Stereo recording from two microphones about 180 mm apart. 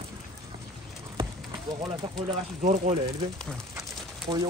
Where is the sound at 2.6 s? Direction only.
45° right (ahead or behind).